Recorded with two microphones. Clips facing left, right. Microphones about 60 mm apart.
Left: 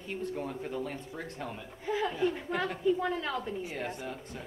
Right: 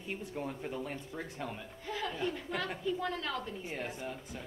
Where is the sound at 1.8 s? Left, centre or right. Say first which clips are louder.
Left 6 dB; centre.